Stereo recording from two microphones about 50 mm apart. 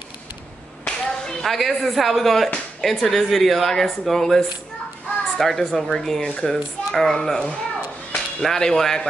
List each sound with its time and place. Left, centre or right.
0.8 s speech: centre
7.2 s speech: centre